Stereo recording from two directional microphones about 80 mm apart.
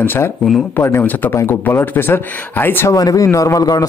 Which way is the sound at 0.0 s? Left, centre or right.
Left.